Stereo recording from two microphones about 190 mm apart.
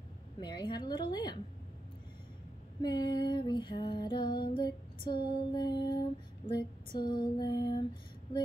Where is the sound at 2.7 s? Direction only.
20° left (ahead or behind).